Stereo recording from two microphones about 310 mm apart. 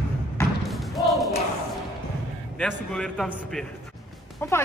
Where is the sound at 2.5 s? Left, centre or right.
Centre.